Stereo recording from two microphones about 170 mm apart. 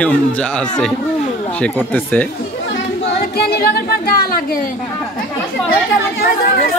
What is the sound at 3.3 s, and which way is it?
Speech, 70° left (ahead or behind).